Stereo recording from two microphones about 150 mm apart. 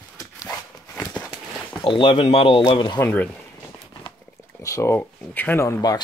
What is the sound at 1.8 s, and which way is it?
Speech, 35° left (ahead or behind).